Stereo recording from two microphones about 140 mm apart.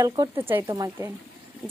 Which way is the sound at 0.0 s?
25° right (ahead or behind).